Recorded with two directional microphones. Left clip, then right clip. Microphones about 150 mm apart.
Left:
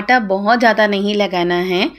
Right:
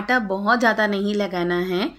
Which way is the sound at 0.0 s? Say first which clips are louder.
Left 7 dB; 15° left (ahead or behind).